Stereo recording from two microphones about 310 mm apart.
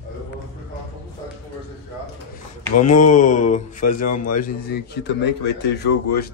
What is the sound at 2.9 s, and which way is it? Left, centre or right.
Mantra, left.